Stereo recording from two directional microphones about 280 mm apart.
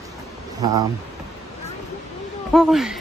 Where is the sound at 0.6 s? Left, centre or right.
Centre.